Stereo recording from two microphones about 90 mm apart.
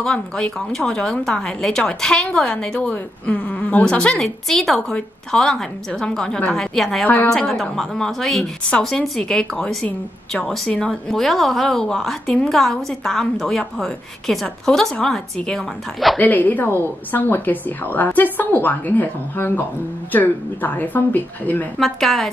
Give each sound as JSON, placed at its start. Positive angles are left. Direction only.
{"t": 0.0, "sound": "a woman's voice", "side_deg": 10}
{"t": 16.2, "sound": "a woman's voice", "side_deg": 20}
{"t": 21.7, "sound": "a woman's voice", "side_deg": 0}